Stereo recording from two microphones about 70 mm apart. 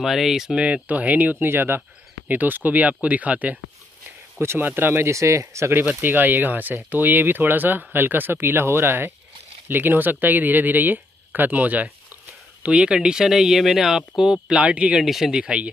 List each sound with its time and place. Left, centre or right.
0.0 s speech: centre; by 3.5 s right
4.4 s speech: right
5.1 s speech: right
12.6 s speech: centre
15.4 s speech: centre